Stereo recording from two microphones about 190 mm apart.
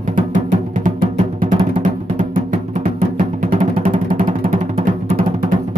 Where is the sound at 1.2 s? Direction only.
30° right (ahead or behind).